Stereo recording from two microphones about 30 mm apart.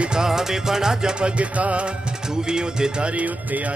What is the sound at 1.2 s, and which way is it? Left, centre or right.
Music, right.